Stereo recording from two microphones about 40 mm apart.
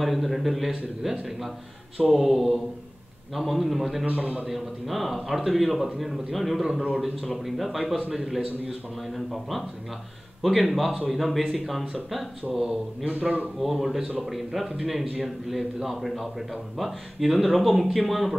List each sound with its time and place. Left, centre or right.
0.0 s a man's voice: centre
2.1 s a man's voice: centre
4.0 s a man's voice: right
4.5 s a man's voice: centre
13.6 s a man's voice: centre